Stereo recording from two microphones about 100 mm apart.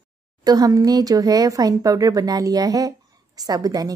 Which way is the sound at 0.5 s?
40° right (ahead or behind).